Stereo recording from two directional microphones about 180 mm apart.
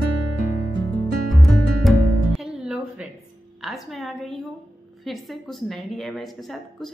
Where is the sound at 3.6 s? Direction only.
Centre (ahead or behind).